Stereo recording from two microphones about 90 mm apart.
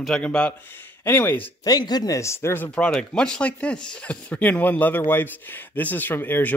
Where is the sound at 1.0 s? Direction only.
25° left (ahead or behind).